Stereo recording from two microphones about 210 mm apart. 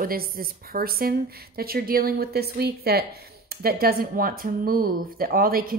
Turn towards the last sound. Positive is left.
turn(degrees=-45)  # may be behind; listen again after turning